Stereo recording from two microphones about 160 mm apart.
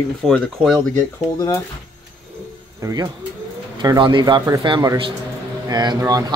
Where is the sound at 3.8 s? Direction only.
30° right (ahead or behind).